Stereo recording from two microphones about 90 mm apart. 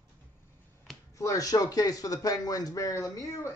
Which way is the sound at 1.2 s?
40° left (ahead or behind).